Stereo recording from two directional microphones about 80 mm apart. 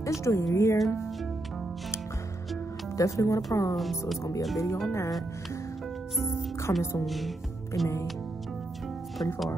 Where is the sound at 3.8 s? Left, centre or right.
Centre.